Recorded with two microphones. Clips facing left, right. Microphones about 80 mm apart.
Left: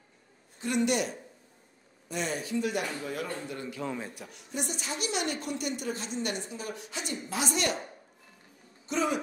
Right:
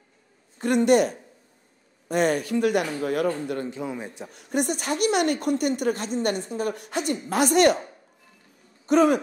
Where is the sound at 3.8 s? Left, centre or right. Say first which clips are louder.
Right 3 dB; centre.